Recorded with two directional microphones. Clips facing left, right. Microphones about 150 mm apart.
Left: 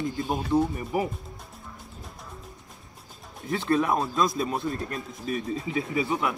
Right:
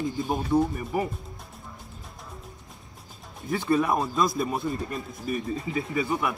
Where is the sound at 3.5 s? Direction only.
5° right (ahead or behind).